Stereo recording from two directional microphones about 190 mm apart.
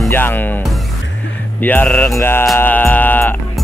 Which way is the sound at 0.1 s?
10° left (ahead or behind).